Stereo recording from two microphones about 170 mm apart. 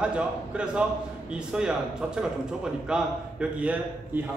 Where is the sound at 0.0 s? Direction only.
5° right (ahead or behind).